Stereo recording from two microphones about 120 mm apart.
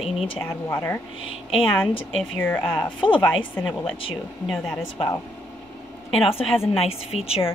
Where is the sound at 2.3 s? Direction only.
15° left (ahead or behind).